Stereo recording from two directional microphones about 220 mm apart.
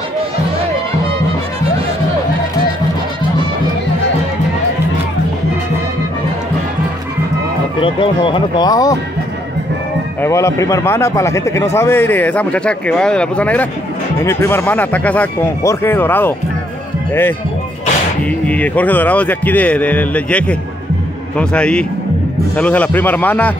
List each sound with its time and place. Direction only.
7.8 s speech: 20° left (ahead or behind)
10.2 s a man's voice: 15° left (ahead or behind)
18.5 s a man's voice: 5° left (ahead or behind)